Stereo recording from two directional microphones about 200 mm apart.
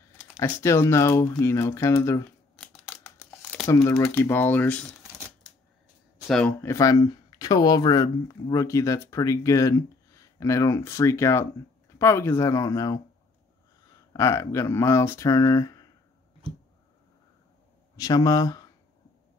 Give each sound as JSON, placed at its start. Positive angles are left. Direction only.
{"t": 0.4, "sound": "speech", "side_deg": 15}
{"t": 2.5, "sound": "scissors", "side_deg": 0}
{"t": 3.6, "sound": "speech", "side_deg": 15}
{"t": 6.2, "sound": "speech", "side_deg": 5}
{"t": 6.6, "sound": "speech", "side_deg": 15}
{"t": 14.1, "sound": "speech", "side_deg": 15}
{"t": 17.9, "sound": "speech", "side_deg": 20}